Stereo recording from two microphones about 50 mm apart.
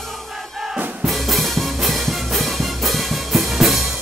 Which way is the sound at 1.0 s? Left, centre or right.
Centre.